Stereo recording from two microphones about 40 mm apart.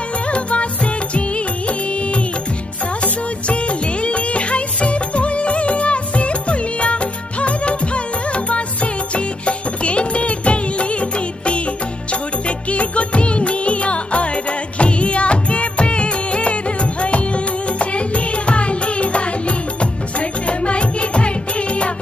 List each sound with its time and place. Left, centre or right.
0.3 s music: left
3.0 s music of bollywood: left
9.1 s music: left